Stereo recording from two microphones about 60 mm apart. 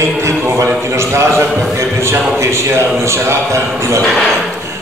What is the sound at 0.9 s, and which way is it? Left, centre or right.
A man's voice, right.